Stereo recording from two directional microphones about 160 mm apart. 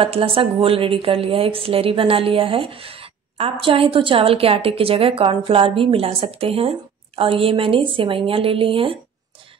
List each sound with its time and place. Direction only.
0.0 s a woman's voice: 35° right (ahead or behind)